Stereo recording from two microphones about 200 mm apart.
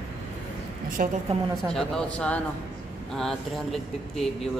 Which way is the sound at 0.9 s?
40° right (ahead or behind).